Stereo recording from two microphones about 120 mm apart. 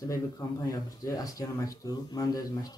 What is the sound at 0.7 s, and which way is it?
Speech, 30° left (ahead or behind).